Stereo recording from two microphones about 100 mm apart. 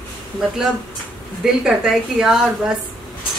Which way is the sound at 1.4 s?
5° right (ahead or behind).